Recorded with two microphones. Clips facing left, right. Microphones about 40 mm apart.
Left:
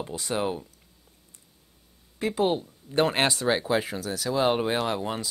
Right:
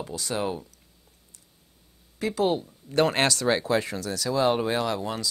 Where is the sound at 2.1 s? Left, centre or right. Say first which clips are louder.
Even; left.